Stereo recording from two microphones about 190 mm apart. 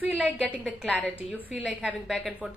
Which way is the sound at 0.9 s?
5° right (ahead or behind).